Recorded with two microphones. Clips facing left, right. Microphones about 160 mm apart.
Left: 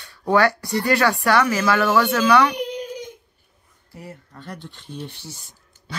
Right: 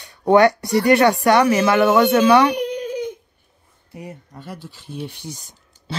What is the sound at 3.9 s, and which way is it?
Speech, 20° right (ahead or behind).